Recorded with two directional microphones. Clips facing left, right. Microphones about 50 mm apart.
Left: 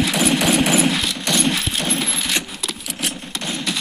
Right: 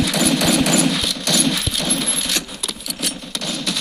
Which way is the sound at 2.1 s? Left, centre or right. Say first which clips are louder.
Left 1 dB; left.